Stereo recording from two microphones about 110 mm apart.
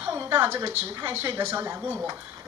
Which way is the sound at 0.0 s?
20° right (ahead or behind).